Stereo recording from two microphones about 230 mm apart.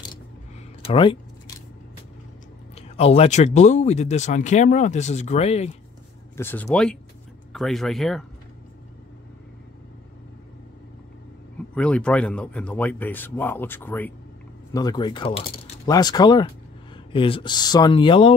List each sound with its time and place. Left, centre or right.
0.8 s speech: left
2.7 s speech: left
6.3 s speech: centre
11.7 s speech: centre; by 18.3 s left